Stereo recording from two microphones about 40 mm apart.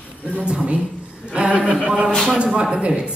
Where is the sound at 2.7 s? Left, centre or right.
Right.